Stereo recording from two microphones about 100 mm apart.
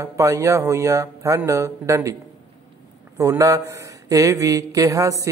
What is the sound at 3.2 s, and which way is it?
Speech, 35° right (ahead or behind).